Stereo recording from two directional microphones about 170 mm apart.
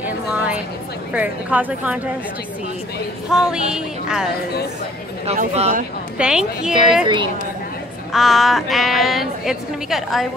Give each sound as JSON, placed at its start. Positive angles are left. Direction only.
{"t": 0.0, "sound": "a sound", "side_deg": -5}
{"t": 1.1, "sound": "a woman's voice", "side_deg": -10}
{"t": 3.3, "sound": "a woman's voice", "side_deg": -5}
{"t": 5.2, "sound": "speech", "side_deg": -40}
{"t": 6.1, "sound": "a woman's voice", "side_deg": -5}
{"t": 6.7, "sound": "speech", "side_deg": -30}
{"t": 8.1, "sound": "a woman's voice", "side_deg": 0}